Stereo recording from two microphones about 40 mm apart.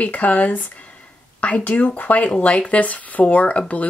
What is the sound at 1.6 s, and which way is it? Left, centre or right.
Speech, left.